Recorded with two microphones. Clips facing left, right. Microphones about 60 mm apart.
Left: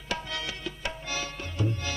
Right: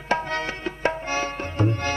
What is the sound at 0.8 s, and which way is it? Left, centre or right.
Tabla, right.